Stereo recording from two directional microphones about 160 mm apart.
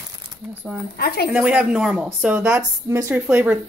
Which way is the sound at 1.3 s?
5° right (ahead or behind).